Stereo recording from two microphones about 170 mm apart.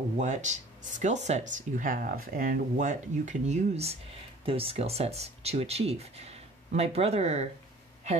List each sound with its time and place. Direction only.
0.2 s speech: 45° right (ahead or behind)